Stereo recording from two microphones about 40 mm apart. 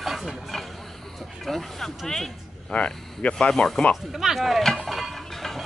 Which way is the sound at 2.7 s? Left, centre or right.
Left.